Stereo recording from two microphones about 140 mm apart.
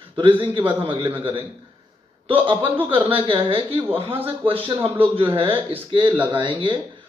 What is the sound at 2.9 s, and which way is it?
A man's voice, 40° right (ahead or behind).